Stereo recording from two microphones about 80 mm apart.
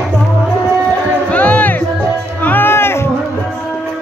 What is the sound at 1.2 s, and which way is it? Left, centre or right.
Music, centre.